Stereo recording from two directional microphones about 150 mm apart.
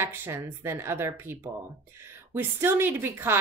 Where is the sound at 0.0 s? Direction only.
15° right (ahead or behind).